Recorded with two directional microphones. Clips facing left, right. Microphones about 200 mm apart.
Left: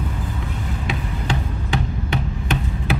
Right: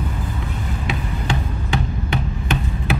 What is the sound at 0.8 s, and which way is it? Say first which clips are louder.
Hammer: right 1 dB; 35° left (ahead or behind).